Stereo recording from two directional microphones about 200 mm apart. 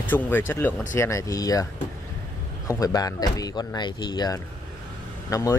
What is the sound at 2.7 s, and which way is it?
Speech, 20° left (ahead or behind).